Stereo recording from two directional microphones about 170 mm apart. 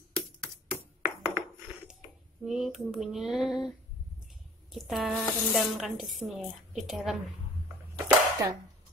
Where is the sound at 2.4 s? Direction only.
Centre (ahead or behind).